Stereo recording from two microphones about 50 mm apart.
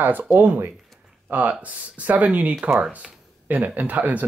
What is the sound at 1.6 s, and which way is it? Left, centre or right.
Speech, right.